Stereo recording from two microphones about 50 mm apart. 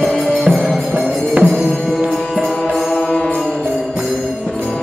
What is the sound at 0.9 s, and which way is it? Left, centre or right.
Music, right.